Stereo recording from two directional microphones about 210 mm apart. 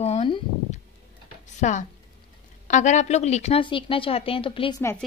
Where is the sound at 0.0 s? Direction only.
30° left (ahead or behind).